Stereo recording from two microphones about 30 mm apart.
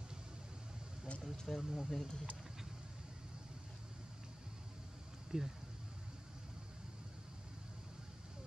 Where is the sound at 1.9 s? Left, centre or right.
Centre.